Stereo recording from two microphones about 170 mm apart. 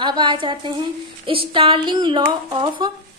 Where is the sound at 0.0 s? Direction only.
25° right (ahead or behind).